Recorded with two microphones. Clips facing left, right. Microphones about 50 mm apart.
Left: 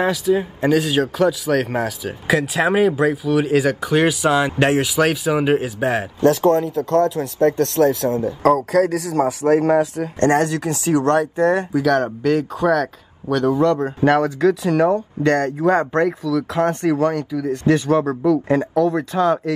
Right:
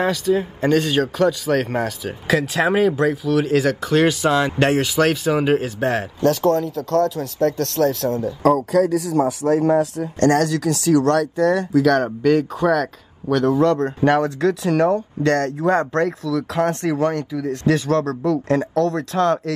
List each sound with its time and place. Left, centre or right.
0.0 s a man's voice: centre
6.2 s speech: left
8.3 s speech: left
11.8 s a man's voice: centre